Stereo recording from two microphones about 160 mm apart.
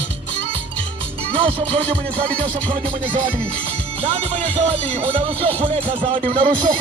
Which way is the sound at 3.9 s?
40° right (ahead or behind).